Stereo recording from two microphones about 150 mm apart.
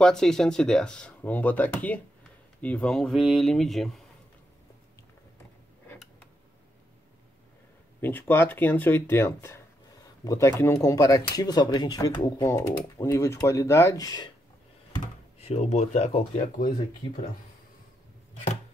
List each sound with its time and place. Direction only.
0.0 s speech: 5° left (ahead or behind)
8.0 s speech: 10° left (ahead or behind)
15.3 s speech: 45° left (ahead or behind)